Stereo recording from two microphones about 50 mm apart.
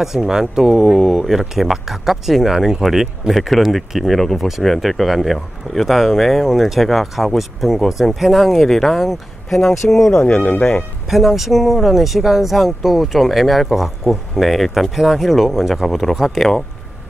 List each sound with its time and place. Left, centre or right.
0.0 s speech: centre
10.1 s speech: left
11.1 s speech: centre